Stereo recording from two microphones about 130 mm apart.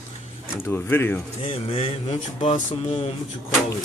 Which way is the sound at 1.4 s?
50° left (ahead or behind).